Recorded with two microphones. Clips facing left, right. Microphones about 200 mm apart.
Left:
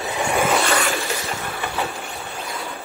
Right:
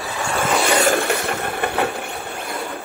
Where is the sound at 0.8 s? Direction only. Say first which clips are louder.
Right 6 dB; 55° right (ahead or behind).